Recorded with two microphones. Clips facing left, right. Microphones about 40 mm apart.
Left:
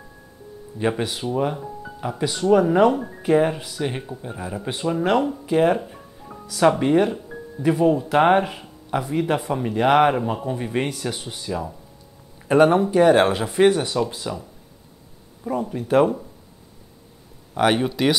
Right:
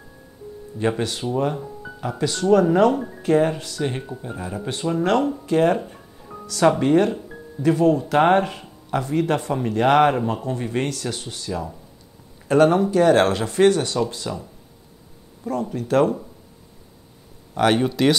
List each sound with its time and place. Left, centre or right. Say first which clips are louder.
0.7 s speech: even; centre
15.7 s speech: left 1 dB; centre
17.6 s speech: right 1 dB; centre